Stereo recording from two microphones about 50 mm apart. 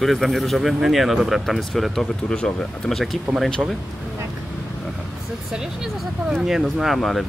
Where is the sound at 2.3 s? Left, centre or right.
Centre.